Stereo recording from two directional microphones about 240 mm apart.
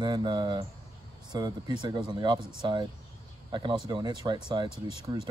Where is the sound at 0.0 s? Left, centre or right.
Centre.